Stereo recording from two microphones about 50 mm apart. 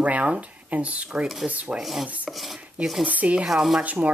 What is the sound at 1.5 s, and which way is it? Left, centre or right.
Rub, right.